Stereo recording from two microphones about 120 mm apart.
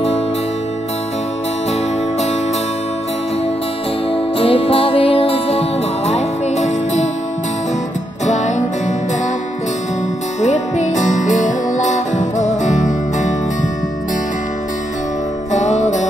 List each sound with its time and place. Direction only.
4.1 s music: 50° left (ahead or behind); by 7.1 s 75° left (ahead or behind)
8.3 s music: 80° left
10.4 s music: 80° left
15.5 s music: 80° left